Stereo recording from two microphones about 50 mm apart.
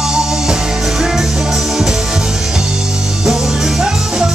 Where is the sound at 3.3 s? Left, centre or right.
Centre.